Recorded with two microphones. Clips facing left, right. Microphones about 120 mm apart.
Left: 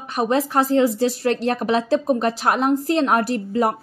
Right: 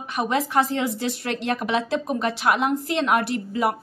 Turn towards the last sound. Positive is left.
turn(degrees=40)  # may be behind; listen again after turning